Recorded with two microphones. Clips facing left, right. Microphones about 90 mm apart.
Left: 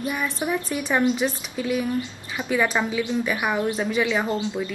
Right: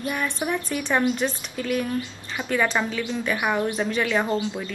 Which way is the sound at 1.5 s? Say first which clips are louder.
Left 1 dB; 15° left (ahead or behind).